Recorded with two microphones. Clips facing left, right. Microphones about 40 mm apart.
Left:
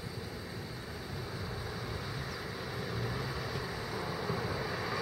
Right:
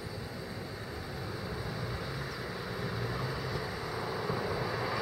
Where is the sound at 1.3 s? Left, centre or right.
Centre.